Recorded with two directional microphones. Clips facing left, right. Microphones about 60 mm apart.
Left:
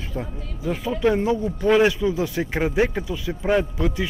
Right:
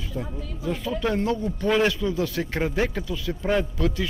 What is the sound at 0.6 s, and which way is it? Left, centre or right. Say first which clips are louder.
Speech: left 5 dB; centre.